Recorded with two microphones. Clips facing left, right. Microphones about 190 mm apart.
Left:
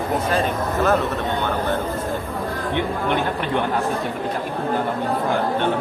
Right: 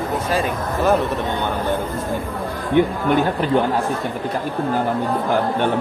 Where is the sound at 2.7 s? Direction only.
45° right (ahead or behind).